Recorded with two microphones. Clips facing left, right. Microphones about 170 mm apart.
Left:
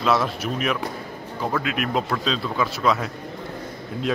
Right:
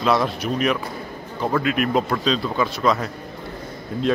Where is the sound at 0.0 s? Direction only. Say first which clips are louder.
Right 2 dB; centre (ahead or behind).